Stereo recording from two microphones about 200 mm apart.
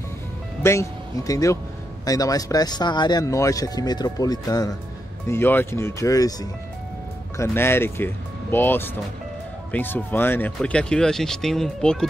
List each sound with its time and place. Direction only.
0.6 s speech: 15° left (ahead or behind)